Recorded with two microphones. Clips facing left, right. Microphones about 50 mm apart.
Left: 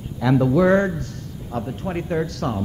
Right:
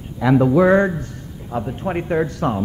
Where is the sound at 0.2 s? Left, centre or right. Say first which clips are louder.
Right 3 dB; centre.